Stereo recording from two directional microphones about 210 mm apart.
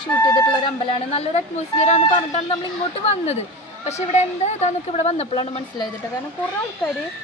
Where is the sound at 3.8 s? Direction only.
30° left (ahead or behind).